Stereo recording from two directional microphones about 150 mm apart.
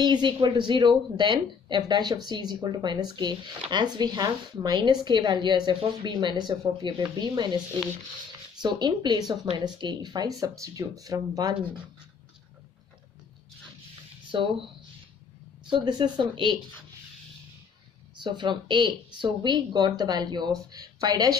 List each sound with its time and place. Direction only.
0.0 s speech: 30° right (ahead or behind)
14.3 s speech: 35° right (ahead or behind)
15.7 s speech: 30° right (ahead or behind)
18.1 s speech: 30° right (ahead or behind)